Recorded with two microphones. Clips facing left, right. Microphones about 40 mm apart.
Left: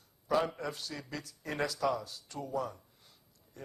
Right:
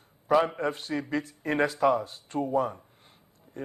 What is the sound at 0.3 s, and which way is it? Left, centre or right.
Speech, right.